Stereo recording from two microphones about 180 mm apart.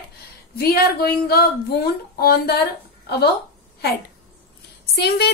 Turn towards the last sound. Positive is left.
turn(degrees=65)  # may be behind; listen again after turning